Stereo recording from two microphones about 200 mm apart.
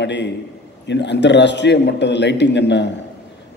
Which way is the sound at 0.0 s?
60° left (ahead or behind).